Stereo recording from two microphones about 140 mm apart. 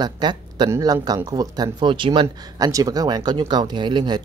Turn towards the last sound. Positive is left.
turn(degrees=-30)  # may be behind; listen again after turning